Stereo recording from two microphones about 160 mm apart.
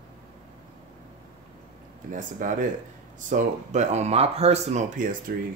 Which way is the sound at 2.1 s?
55° right (ahead or behind).